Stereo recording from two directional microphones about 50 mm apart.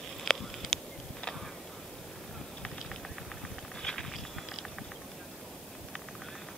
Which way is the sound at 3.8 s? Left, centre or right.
Centre.